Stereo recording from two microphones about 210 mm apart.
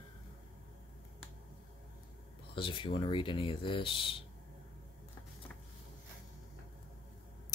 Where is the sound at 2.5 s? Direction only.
20° left (ahead or behind).